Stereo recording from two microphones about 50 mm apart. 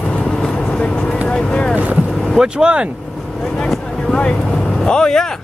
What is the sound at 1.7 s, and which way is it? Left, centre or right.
Boat, right.